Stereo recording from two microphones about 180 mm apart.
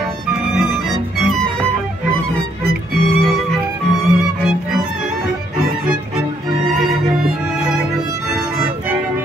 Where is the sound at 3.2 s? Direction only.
Centre (ahead or behind).